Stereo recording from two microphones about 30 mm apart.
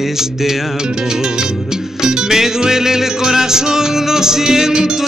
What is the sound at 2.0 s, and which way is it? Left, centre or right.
Music, centre.